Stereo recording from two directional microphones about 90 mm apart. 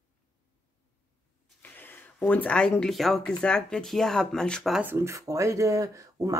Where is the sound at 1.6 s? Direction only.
20° left (ahead or behind).